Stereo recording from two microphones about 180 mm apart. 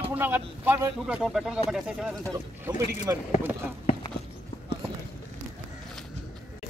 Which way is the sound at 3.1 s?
15° right (ahead or behind).